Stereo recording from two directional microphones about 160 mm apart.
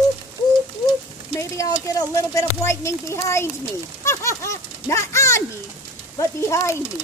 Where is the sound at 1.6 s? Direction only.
20° left (ahead or behind).